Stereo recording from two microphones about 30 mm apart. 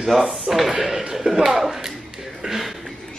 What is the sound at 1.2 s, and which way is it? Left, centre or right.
Speech, centre.